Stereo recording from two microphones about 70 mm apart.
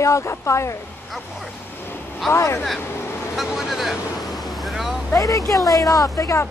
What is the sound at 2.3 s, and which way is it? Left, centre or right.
Speech, left.